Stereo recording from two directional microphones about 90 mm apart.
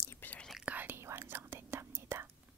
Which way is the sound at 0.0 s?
25° left (ahead or behind).